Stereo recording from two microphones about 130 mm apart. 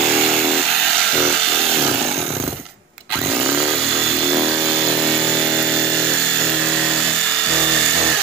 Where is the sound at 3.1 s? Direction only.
20° right (ahead or behind).